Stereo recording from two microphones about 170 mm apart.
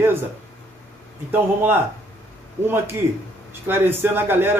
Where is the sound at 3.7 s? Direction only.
10° right (ahead or behind).